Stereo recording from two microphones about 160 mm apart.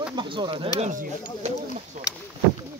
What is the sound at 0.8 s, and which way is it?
Speech, 45° right (ahead or behind).